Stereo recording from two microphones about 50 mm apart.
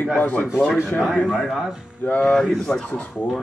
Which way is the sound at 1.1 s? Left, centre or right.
Centre.